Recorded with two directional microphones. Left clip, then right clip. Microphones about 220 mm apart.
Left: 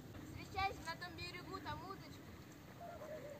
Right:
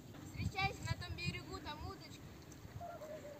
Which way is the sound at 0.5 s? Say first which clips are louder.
Right 1 dB; 10° right (ahead or behind).